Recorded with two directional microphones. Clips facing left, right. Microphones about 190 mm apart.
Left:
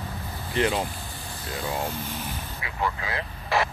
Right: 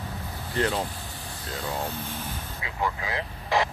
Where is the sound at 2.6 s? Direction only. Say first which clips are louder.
Even; 15° right (ahead or behind).